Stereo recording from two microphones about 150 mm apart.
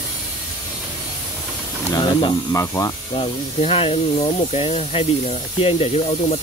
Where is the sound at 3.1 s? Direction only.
40° left (ahead or behind).